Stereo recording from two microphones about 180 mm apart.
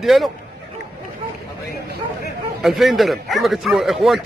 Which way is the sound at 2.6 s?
Centre (ahead or behind).